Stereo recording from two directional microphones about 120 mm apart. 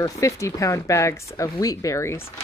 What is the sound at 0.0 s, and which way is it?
Speech, 25° left (ahead or behind).